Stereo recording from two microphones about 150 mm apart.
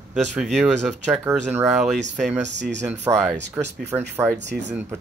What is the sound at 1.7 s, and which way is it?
Speech, 5° right (ahead or behind).